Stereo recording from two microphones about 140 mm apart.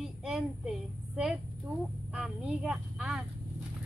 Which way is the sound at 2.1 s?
5° right (ahead or behind).